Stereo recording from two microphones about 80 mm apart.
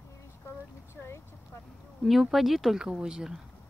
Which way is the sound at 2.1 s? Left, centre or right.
Centre.